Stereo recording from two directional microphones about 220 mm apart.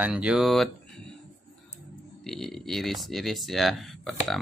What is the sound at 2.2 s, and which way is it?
Speech, centre (ahead or behind).